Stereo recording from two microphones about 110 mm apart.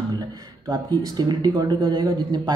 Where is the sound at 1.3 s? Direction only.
35° right (ahead or behind).